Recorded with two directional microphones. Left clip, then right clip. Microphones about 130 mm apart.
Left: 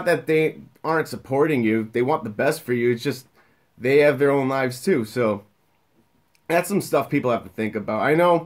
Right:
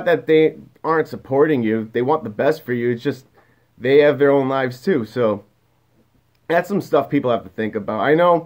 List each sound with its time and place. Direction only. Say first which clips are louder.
0.0 s speech: right 5 dB; 20° left (ahead or behind)
6.4 s speech: right 3 dB; 20° left (ahead or behind)